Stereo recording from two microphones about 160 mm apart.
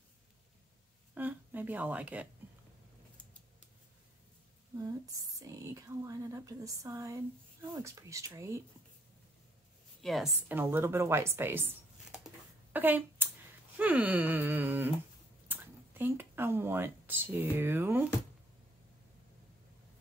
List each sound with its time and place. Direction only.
1.1 s a sound: 10° right (ahead or behind)
4.7 s speech: 20° right (ahead or behind)
10.0 s a woman's voice: centre (ahead or behind)
10.5 s speech: 10° right (ahead or behind)
12.7 s a sound: 10° right (ahead or behind)
13.7 s wail: 10° right (ahead or behind)
15.4 s speech: 10° right (ahead or behind)